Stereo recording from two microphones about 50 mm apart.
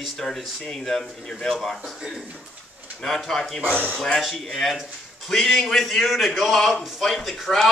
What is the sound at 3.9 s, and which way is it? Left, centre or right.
Speech, centre.